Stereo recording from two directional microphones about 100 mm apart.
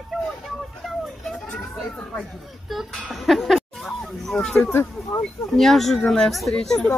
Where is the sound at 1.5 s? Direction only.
5° left (ahead or behind).